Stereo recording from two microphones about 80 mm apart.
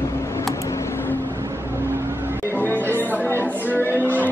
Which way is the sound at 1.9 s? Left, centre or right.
Right.